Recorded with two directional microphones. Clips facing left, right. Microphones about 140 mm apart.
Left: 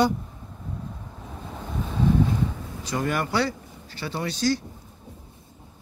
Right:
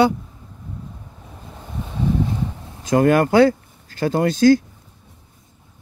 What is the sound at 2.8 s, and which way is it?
Speech, 50° right (ahead or behind).